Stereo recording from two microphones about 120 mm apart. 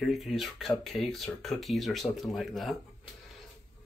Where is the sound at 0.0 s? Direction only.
Centre (ahead or behind).